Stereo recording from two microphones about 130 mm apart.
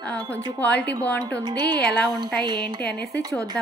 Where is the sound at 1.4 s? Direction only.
30° right (ahead or behind).